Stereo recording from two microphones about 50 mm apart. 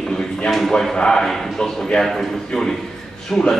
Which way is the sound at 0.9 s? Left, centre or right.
Centre.